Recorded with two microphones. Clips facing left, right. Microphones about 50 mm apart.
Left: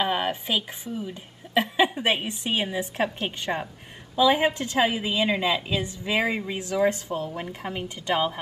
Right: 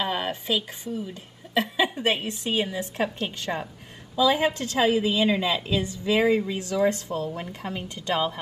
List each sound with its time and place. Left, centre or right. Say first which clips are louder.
0.0 s a woman's voice: left 2 dB; centre